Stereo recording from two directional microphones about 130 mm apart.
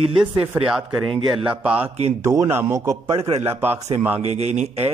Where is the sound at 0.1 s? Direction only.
40° right (ahead or behind).